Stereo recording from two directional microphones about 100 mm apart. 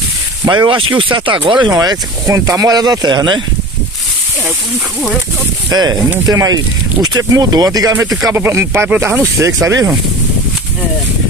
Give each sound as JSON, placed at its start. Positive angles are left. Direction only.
{"t": 0.5, "sound": "speech", "side_deg": -55}
{"t": 5.7, "sound": "speech", "side_deg": -45}
{"t": 8.3, "sound": "speech", "side_deg": -25}
{"t": 9.2, "sound": "speech", "side_deg": -30}